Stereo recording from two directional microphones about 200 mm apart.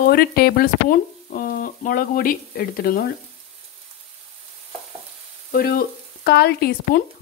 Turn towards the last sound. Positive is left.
turn(degrees=45)  # may be behind; listen again after turning